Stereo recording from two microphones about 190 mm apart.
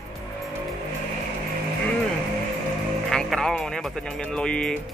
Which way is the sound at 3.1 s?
Centre (ahead or behind).